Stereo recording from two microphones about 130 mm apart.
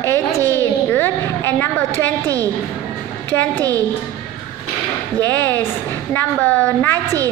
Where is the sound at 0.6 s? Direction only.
15° left (ahead or behind).